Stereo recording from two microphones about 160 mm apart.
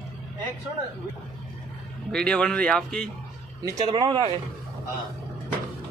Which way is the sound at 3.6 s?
20° right (ahead or behind).